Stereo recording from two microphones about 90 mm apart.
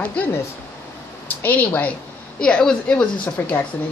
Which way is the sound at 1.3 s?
20° left (ahead or behind).